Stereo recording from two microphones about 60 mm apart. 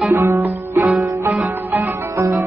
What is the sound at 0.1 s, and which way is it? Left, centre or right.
Music, right.